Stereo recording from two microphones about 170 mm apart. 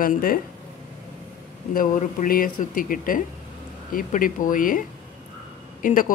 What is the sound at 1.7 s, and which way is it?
Speech, 50° left (ahead or behind).